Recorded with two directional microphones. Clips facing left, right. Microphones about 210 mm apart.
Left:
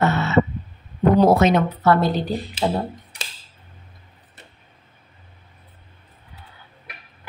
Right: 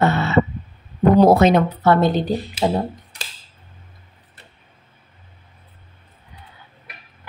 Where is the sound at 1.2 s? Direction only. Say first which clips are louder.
Right 3 dB; 35° right (ahead or behind); by 2.8 s 15° right (ahead or behind).